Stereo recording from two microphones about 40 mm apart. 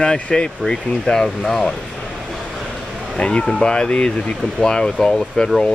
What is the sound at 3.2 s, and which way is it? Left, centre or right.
Speech, left.